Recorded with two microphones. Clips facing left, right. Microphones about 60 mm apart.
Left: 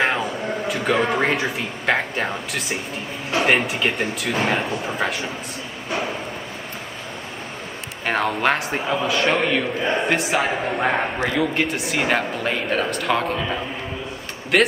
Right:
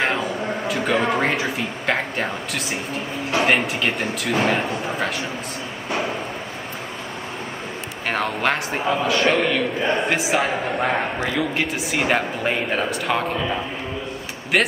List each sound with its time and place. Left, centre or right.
0.7 s a sound: centre
3.3 s a man's voice: centre
8.1 s a man's voice: centre
14.5 s a man's voice: centre